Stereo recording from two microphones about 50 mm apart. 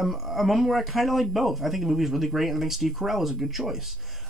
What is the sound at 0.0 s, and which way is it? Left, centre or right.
Speech, centre.